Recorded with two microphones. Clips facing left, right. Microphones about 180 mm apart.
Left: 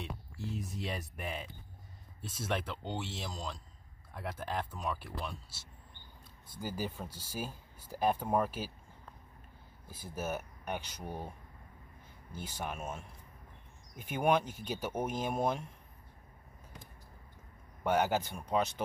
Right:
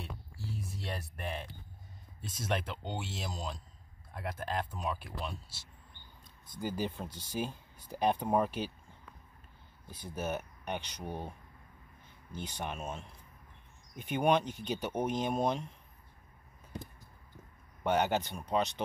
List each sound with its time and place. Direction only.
0.4 s a sound: 20° left (ahead or behind)
0.9 s speech: 5° left (ahead or behind)
6.4 s speech: 10° left (ahead or behind)
9.8 s speech: 5° left (ahead or behind)
17.8 s speech: 5° left (ahead or behind)